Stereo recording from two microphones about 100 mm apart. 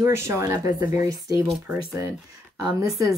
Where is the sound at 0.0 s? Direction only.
25° right (ahead or behind).